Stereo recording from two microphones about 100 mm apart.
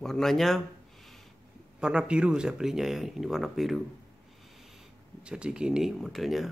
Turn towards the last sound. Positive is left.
turn(degrees=0)  # may be behind; listen again after turning